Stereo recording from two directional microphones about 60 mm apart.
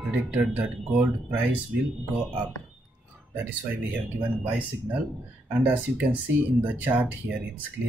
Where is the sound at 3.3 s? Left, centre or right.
Right.